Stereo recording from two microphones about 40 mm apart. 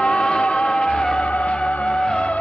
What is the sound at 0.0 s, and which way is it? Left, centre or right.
Music, left.